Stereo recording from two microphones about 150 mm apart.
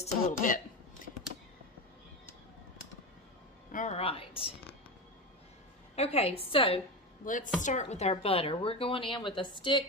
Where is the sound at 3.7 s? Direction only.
50° left (ahead or behind).